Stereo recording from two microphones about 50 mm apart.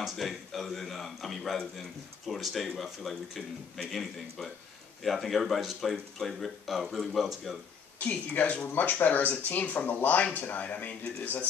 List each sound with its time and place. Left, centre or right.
0.0 s a man's voice: centre
5.0 s a man's voice: centre
8.0 s speech: left